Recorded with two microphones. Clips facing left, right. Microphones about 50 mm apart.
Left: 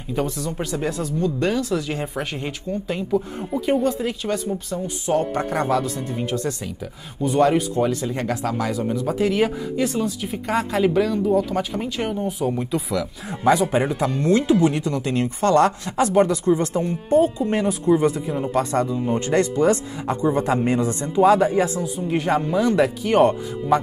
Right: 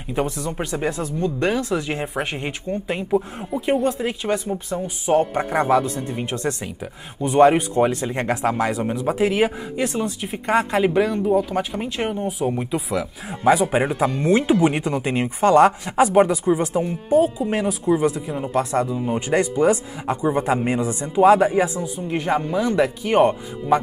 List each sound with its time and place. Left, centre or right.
0.1 s speech: right
3.2 s speech: centre
3.8 s speech: centre
6.0 s speech: right
6.6 s speech: right
9.1 s speech: centre
13.3 s speech: centre